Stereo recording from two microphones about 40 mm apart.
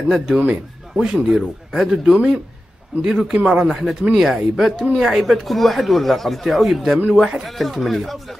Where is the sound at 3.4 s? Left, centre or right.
Right.